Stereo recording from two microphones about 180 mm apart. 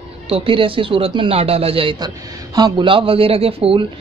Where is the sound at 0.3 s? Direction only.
30° right (ahead or behind).